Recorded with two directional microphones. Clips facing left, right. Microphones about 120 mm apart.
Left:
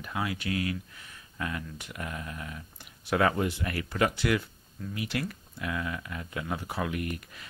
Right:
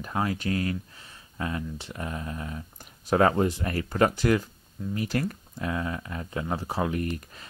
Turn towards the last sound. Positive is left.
turn(degrees=-35)  # may be behind; listen again after turning